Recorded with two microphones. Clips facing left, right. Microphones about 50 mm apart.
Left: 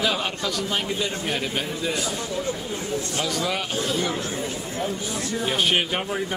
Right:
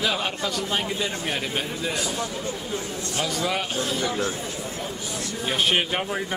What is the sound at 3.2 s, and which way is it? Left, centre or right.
Speech, centre.